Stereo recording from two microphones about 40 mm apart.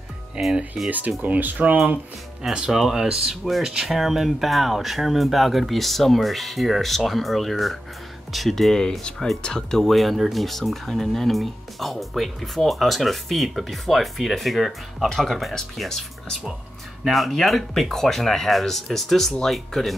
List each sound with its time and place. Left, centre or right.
0.4 s speech: right
0.8 s speech: right
2.5 s speech: right; by 8.8 s centre
9.4 s speech: centre
9.8 s speech: centre
17.0 s speech: centre